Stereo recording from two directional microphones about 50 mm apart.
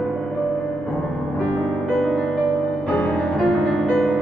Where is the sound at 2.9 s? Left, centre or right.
Left.